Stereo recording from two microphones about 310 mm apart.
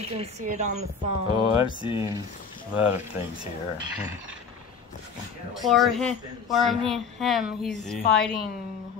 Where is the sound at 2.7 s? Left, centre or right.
Centre.